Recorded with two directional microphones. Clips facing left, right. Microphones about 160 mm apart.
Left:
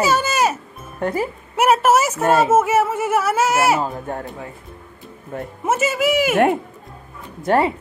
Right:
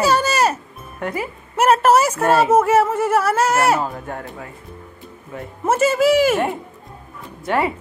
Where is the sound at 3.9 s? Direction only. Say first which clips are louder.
Left 2 dB; 30° left (ahead or behind).